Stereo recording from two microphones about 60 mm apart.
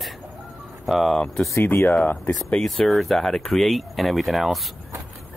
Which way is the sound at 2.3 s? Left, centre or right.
Left.